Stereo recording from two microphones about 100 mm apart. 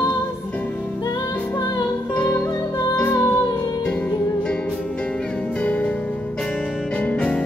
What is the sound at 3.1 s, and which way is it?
Music, 25° left (ahead or behind).